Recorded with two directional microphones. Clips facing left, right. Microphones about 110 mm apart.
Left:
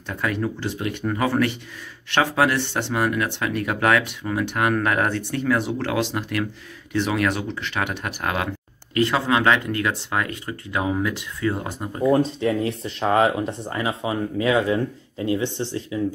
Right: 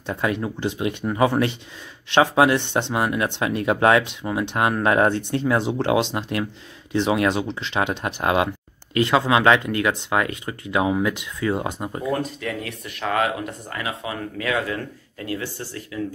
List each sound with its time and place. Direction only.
0.0 s speech: 20° right (ahead or behind)
12.1 s speech: 25° left (ahead or behind)